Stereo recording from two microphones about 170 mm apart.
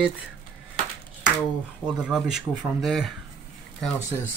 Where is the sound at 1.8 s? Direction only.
5° right (ahead or behind).